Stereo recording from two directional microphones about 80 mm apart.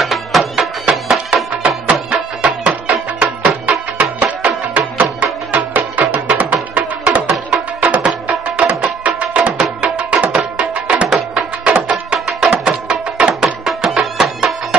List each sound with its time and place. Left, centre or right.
0.0 s music: centre